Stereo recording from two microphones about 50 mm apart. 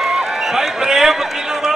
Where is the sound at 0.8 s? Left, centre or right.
Centre.